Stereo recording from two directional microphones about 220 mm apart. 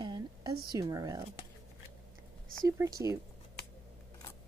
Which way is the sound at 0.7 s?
15° right (ahead or behind).